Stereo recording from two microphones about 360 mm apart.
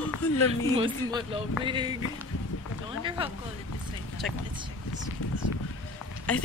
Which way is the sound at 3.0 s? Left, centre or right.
Centre.